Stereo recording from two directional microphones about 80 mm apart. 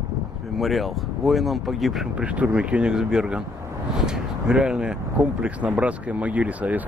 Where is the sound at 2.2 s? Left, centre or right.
Centre.